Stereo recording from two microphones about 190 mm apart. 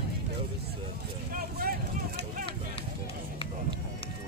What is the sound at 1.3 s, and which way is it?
Vehicle, 50° right (ahead or behind).